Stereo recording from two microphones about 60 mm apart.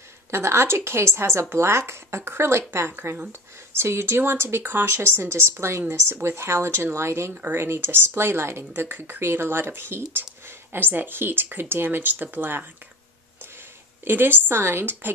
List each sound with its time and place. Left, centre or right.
0.3 s a woman's voice: right
8.8 s speech: right
14.0 s speech: right